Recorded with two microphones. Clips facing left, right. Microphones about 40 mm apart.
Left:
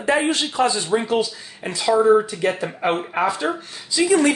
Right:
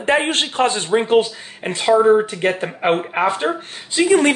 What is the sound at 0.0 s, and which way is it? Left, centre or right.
A man's voice, right.